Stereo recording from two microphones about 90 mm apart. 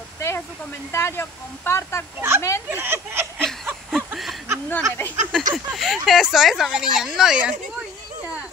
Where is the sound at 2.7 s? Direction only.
25° right (ahead or behind).